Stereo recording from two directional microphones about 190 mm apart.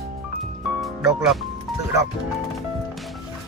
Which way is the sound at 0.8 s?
Centre (ahead or behind).